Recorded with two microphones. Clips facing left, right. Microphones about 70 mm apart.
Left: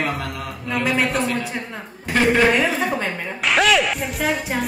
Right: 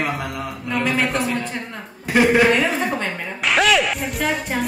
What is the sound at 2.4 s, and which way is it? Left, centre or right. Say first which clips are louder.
Speech: even; centre.